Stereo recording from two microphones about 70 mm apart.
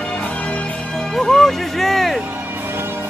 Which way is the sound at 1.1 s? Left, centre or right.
Centre.